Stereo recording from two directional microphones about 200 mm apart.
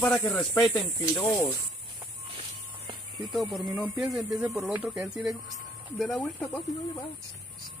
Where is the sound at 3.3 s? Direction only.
Centre (ahead or behind).